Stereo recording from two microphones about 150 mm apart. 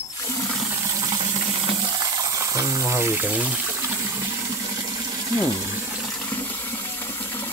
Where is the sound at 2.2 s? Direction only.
20° right (ahead or behind).